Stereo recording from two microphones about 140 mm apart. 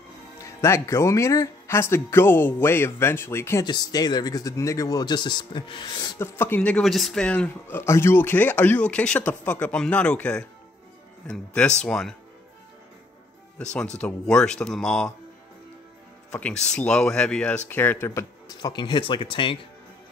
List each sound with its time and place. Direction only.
0.4 s speech: 20° left (ahead or behind)
3.6 s speech: 30° left (ahead or behind)
6.1 s speech: 15° left (ahead or behind)
13.9 s speech: 5° left (ahead or behind)
16.3 s speech: 10° left (ahead or behind)
18.6 s speech: 30° left (ahead or behind)